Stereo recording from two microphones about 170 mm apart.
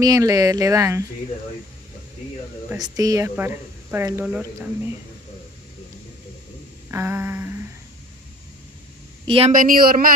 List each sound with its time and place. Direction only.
0.0 s speech: 20° right (ahead or behind)
2.8 s speech: 20° right (ahead or behind)
6.9 s a sound: 15° right (ahead or behind)
9.5 s speech: 55° right (ahead or behind)